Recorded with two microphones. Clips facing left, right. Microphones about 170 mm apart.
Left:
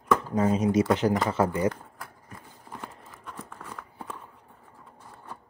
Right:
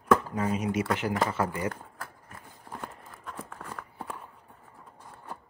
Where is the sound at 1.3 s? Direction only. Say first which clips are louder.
Left 5 dB; 25° left (ahead or behind).